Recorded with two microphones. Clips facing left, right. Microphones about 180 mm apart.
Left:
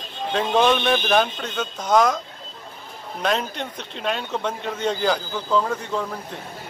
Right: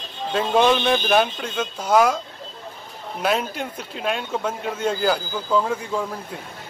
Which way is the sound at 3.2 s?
5° right (ahead or behind).